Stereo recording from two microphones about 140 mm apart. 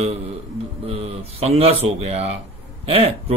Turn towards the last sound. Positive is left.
turn(degrees=-45)  # may be behind; listen again after turning